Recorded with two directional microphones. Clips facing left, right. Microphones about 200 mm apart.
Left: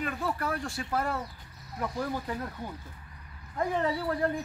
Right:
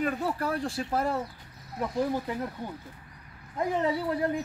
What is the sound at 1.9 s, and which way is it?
Speech, 15° right (ahead or behind).